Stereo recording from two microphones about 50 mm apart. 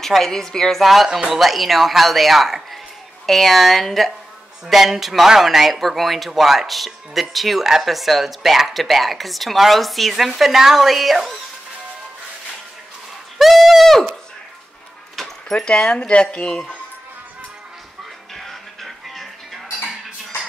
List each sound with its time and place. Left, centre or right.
0.0 s a woman's voice: centre
13.4 s a sound: centre
15.1 s speech: centre
18.3 s music: centre